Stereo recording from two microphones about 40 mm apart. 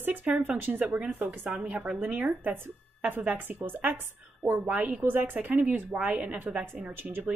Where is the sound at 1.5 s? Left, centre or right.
Right.